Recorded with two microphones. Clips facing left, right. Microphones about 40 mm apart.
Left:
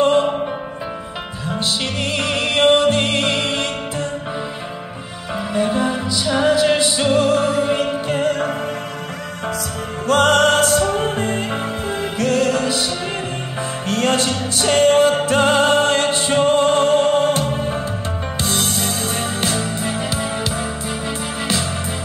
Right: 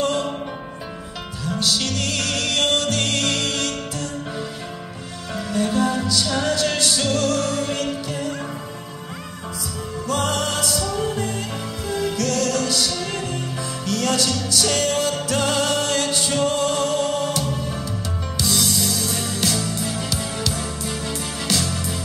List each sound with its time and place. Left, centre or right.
0.0 s music: left
1.4 s music: left
5.3 s music: left
8.1 s music: left
10.0 s music: left